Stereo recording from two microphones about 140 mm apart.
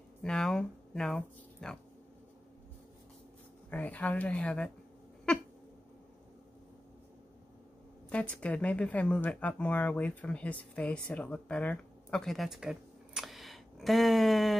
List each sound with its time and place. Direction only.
0.2 s speech: 5° left (ahead or behind)
3.7 s speech: 10° left (ahead or behind)
8.1 s speech: 10° left (ahead or behind)